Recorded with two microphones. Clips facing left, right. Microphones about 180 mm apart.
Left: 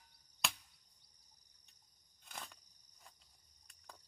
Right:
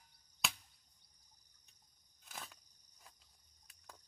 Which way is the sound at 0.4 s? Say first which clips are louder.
Even; centre (ahead or behind).